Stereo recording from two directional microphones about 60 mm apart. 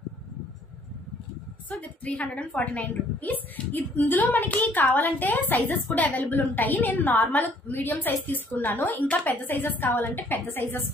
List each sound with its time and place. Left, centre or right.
1.7 s a woman's voice: left